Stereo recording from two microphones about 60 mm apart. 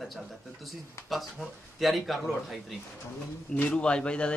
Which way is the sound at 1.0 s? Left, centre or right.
Centre.